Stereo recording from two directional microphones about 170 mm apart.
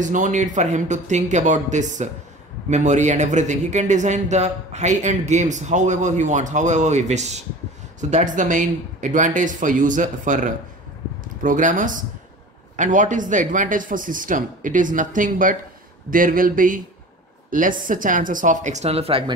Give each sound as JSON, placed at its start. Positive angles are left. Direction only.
{"t": 0.0, "sound": "a man's voice", "side_deg": -45}